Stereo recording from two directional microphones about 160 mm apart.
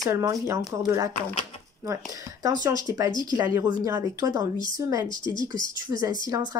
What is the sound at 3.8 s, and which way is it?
Speech, 15° right (ahead or behind).